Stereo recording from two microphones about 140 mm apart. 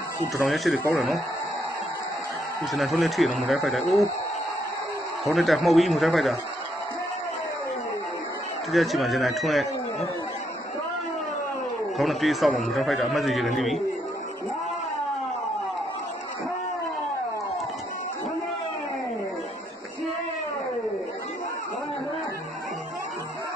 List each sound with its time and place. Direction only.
0.4 s a man's voice: centre (ahead or behind)
2.7 s a man's voice: centre (ahead or behind)
5.2 s a man's voice: centre (ahead or behind)
8.7 s a man's voice: centre (ahead or behind)
12.0 s a man's voice: centre (ahead or behind)